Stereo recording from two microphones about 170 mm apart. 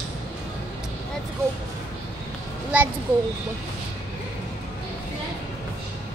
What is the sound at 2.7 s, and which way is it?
Speech, 10° right (ahead or behind).